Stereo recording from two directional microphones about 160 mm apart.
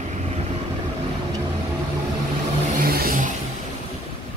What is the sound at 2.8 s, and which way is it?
Vehicle, 70° right (ahead or behind).